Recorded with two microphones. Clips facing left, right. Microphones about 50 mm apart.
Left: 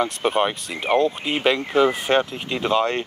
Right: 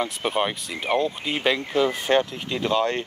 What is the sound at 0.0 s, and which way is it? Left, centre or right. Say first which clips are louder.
Speech: left 4 dB; centre.